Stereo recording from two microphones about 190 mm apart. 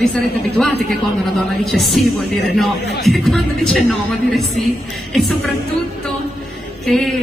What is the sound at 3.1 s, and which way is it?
Speech, centre (ahead or behind).